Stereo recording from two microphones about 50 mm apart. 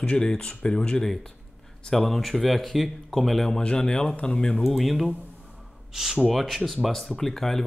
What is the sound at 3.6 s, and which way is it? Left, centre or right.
Speech, centre.